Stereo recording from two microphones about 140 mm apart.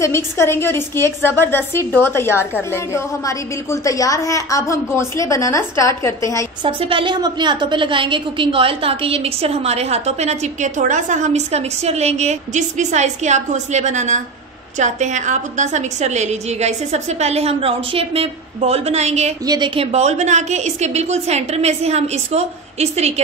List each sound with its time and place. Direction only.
0.0 s a woman's voice: 20° left (ahead or behind)
6.6 s a woman's voice: 40° right (ahead or behind)
19.4 s a woman's voice: 30° right (ahead or behind); by 23.2 s 50° right (ahead or behind)